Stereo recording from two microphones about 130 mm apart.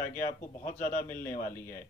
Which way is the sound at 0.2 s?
90° left.